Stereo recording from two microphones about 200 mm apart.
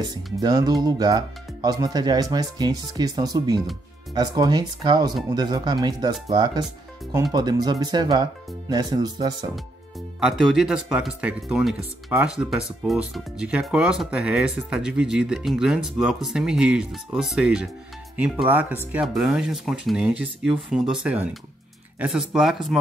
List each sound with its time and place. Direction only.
0.4 s speech: 20° right (ahead or behind)
10.2 s speech: 5° right (ahead or behind)